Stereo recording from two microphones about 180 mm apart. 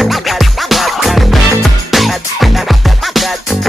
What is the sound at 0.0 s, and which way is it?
Music, centre (ahead or behind).